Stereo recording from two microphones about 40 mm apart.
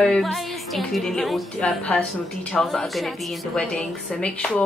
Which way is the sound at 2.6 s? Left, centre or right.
Centre.